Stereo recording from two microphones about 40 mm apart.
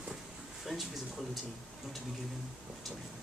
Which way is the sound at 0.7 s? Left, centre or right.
Centre.